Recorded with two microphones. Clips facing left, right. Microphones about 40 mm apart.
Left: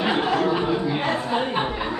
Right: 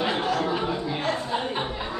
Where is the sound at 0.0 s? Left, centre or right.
Left.